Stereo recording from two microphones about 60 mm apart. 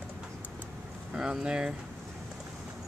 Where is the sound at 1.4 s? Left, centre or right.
Centre.